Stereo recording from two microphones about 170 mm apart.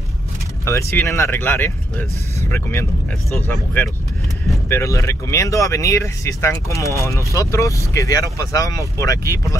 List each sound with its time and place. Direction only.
0.7 s speech: 15° left (ahead or behind)